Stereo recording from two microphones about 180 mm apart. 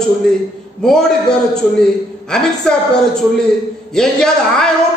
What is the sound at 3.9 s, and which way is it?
Speech, 5° left (ahead or behind).